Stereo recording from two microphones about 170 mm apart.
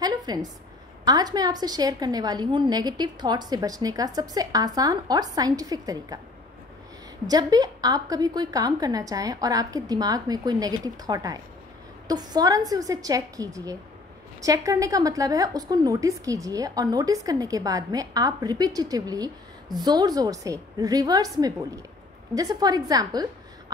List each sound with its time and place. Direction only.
0.0 s a sound: 25° right (ahead or behind)
1.0 s a woman's voice: 25° right (ahead or behind)
7.2 s a woman's voice: 25° right (ahead or behind)